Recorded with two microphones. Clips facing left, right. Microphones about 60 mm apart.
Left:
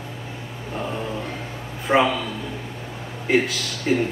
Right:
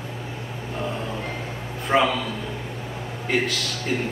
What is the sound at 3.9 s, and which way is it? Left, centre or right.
Speech, centre.